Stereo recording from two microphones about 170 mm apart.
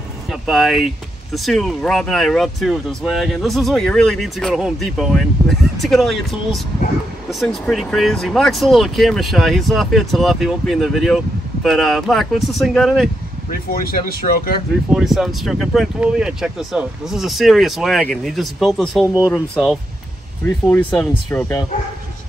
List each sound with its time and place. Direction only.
0.3 s speech: centre (ahead or behind)
13.5 s speech: 60° left (ahead or behind)
14.9 s speech: 5° right (ahead or behind)
20.4 s speech: 10° left (ahead or behind)